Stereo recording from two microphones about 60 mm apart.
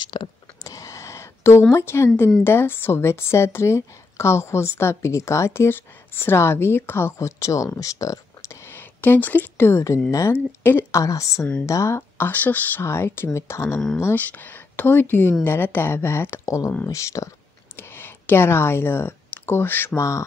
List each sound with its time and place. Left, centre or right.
0.7 s a sound: left
1.7 s a woman's voice: left
8.7 s a sound: left
9.7 s a woman's voice: left
10.3 s speech: left
10.9 s a woman's voice: left
12.3 s speech: left
12.8 s a woman's voice: left
14.1 s speech: left
16.4 s a woman's voice: left
17.7 s a sound: left
20.0 s a woman's voice: left